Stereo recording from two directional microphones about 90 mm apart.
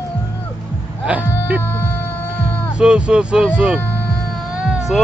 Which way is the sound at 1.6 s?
25° left (ahead or behind).